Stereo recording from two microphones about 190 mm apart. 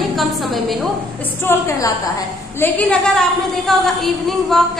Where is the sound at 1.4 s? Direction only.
15° left (ahead or behind).